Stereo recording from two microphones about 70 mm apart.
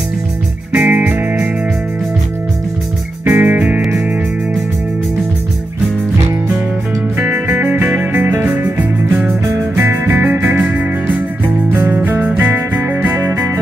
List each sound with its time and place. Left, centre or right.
0.7 s music: right
3.3 s music: right
7.2 s music: right
8.2 s music: right
8.5 s music: right